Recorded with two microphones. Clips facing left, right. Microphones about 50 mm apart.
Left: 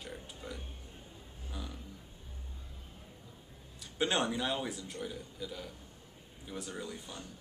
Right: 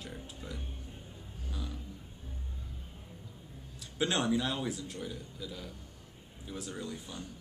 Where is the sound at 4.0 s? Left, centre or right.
Centre.